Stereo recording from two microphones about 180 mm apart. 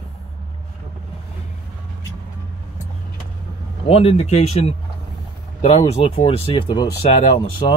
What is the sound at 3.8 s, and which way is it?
Speech, 30° left (ahead or behind).